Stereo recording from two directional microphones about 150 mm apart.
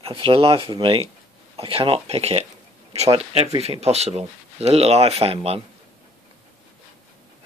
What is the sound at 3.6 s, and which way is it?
Speech, 45° right (ahead or behind).